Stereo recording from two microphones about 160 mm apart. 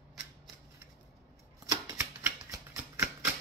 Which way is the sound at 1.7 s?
20° right (ahead or behind).